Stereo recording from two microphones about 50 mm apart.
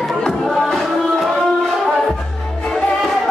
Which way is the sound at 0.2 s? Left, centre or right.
Centre.